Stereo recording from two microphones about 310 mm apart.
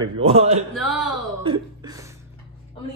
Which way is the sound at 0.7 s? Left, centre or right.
Centre.